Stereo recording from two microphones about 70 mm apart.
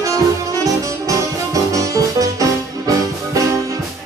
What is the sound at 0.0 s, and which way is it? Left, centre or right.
Music, right.